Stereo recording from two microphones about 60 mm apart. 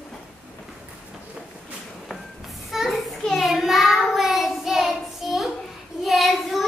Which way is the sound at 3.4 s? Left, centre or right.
Centre.